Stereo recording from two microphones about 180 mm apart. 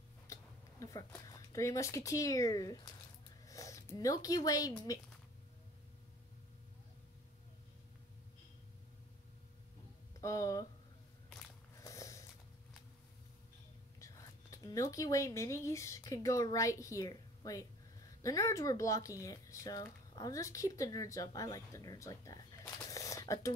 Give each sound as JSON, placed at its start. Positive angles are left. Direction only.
{"t": 0.3, "sound": "speech", "side_deg": 15}
{"t": 10.2, "sound": "speech", "side_deg": 15}
{"t": 11.8, "sound": "a sound", "side_deg": 15}
{"t": 13.9, "sound": "speech", "side_deg": 20}